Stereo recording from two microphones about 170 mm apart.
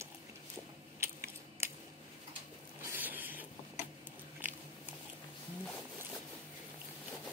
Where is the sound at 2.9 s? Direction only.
10° right (ahead or behind).